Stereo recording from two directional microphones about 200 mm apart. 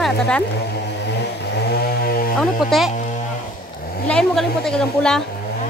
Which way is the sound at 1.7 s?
50° left (ahead or behind).